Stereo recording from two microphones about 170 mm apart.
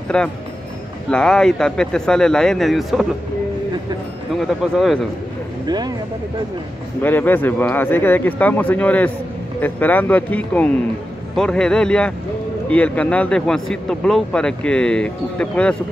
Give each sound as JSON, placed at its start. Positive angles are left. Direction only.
{"t": 0.1, "sound": "speech", "side_deg": 5}
{"t": 4.4, "sound": "speech", "side_deg": 0}
{"t": 5.7, "sound": "speech", "side_deg": -25}
{"t": 7.0, "sound": "speech", "side_deg": 10}